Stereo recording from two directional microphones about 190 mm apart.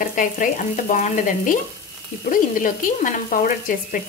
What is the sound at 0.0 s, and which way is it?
Frying, 45° left (ahead or behind).